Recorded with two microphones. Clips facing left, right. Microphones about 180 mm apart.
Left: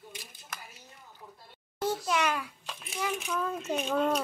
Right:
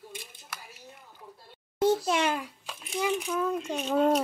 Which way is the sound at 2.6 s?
5° right (ahead or behind).